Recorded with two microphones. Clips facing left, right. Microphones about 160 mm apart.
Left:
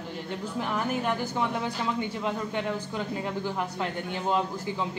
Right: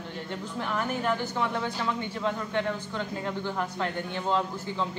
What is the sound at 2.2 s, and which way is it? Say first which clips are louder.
A man's voice: right 1 dB; 10° left (ahead or behind).